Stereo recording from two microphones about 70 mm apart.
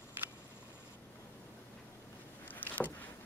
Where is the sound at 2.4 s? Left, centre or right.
Left.